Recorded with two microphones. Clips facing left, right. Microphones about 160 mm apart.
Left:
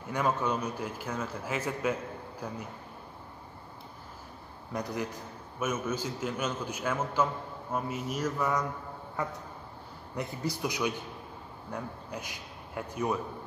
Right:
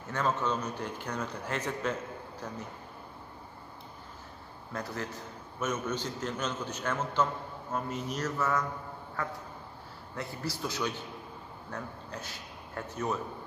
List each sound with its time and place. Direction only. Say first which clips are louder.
0.1 s a man's voice: left 1 dB; 10° left (ahead or behind)
4.7 s a man's voice: left 3 dB; 15° left (ahead or behind)